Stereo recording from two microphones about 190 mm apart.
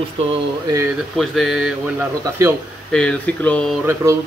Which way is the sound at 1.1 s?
Centre (ahead or behind).